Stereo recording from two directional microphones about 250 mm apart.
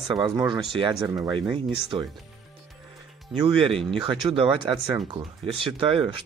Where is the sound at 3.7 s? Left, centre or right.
Centre.